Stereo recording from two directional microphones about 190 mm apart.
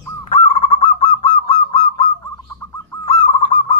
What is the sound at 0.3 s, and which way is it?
Goose, 30° left (ahead or behind).